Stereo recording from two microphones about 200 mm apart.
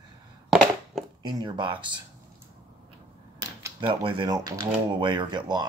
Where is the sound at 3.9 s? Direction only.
25° right (ahead or behind).